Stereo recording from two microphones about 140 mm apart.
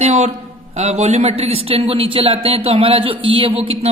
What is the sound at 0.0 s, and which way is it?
A man's voice, 55° right (ahead or behind).